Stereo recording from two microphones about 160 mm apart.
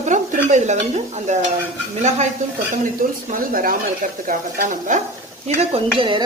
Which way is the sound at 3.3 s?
60° right (ahead or behind).